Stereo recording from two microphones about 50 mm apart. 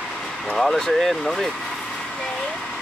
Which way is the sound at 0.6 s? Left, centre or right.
Centre.